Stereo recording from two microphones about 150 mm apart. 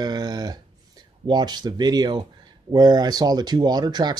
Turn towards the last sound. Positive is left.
turn(degrees=-25)  # may be behind; listen again after turning